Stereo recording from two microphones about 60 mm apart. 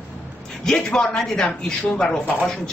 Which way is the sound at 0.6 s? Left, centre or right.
Centre.